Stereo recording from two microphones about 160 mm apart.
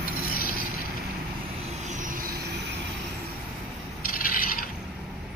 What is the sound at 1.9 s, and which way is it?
Vehicle, 55° right (ahead or behind).